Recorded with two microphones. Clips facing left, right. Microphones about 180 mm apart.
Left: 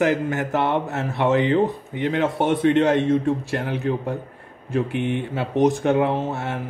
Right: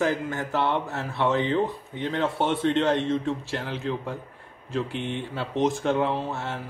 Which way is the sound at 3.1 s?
55° left (ahead or behind).